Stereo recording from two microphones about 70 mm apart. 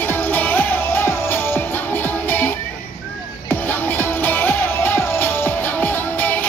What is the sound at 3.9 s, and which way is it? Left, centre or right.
Music, left.